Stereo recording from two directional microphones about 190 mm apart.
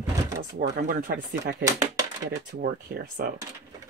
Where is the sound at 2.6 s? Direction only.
50° right (ahead or behind).